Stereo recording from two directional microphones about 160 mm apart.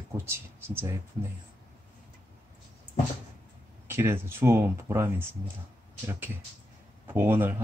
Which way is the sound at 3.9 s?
15° right (ahead or behind).